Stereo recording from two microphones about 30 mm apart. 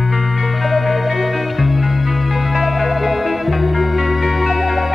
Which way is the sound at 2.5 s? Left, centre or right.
Centre.